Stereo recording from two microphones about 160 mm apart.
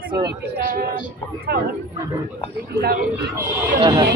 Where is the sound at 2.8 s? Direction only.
70° right (ahead or behind).